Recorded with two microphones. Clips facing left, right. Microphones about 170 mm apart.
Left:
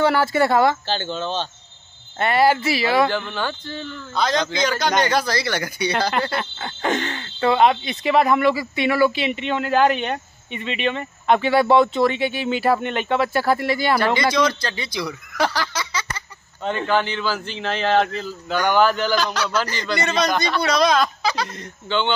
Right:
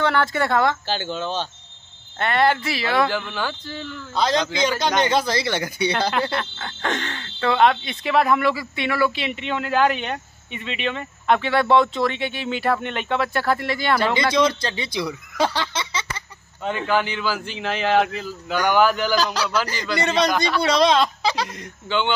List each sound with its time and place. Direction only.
0.0 s speech: 5° left (ahead or behind)
0.8 s a man's voice: 10° right (ahead or behind)
2.1 s speech: 5° left (ahead or behind)
4.1 s a man's voice: 30° right (ahead or behind)
4.4 s a man's voice: 10° right (ahead or behind)
4.6 s speech: 25° right (ahead or behind)
5.9 s speech: centre (ahead or behind)
14.1 s speech: 25° right (ahead or behind)
16.6 s a man's voice: 5° right (ahead or behind)
20.6 s speech: 25° right (ahead or behind)
21.8 s a man's voice: 10° right (ahead or behind)